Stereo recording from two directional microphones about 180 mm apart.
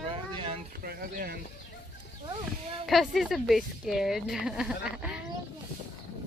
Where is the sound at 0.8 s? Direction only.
55° right (ahead or behind).